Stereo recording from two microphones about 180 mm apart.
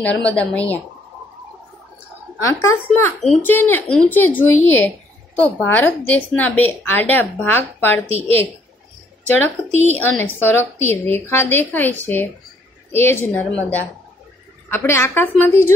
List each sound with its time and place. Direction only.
0.0 s speech: 5° left (ahead or behind)
2.4 s speech: 15° left (ahead or behind)
8.1 s a woman's voice: 35° right (ahead or behind)
9.8 s speech: 10° left (ahead or behind)